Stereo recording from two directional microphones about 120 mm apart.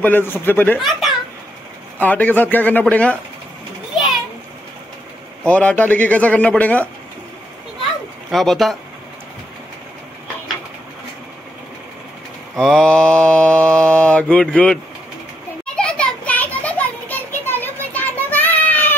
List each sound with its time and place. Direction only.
0.0 s mantra: 15° left (ahead or behind)
0.7 s a child's voice: centre (ahead or behind)
2.0 s mantra: 15° left (ahead or behind)
5.5 s mantra: 10° left (ahead or behind)
8.3 s speech: centre (ahead or behind)
12.5 s mantra: 5° left (ahead or behind)
15.6 s children playing: 10° left (ahead or behind)